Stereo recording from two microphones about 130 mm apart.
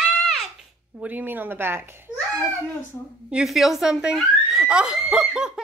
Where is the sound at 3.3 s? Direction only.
5° right (ahead or behind).